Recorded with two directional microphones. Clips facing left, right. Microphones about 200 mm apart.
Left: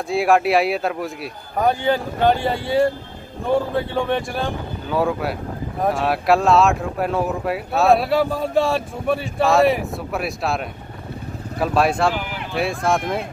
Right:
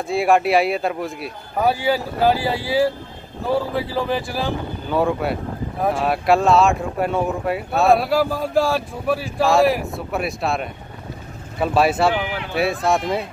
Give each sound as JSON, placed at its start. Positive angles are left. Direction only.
{"t": 0.1, "sound": "speech", "side_deg": 0}
{"t": 12.1, "sound": "speech", "side_deg": -55}
{"t": 12.5, "sound": "speech", "side_deg": 0}